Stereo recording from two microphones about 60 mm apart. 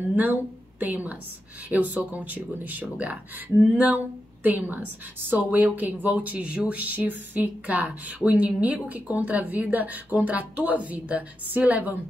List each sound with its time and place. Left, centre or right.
0.1 s a woman's voice: right